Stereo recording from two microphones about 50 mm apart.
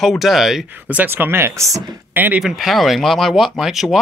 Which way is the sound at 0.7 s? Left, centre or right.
Right.